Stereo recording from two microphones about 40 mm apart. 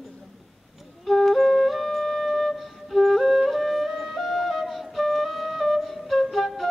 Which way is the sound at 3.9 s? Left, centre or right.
Centre.